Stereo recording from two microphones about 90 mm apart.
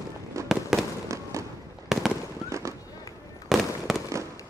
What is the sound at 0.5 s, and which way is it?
Fireworks, 5° right (ahead or behind).